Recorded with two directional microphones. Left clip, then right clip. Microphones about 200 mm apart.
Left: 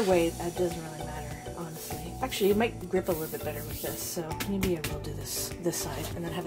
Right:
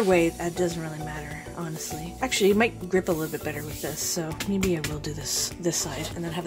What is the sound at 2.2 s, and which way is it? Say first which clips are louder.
Speech: right 5 dB; 40° right (ahead or behind).